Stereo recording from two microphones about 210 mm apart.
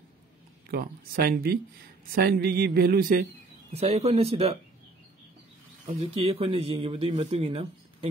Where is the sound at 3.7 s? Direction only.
30° right (ahead or behind).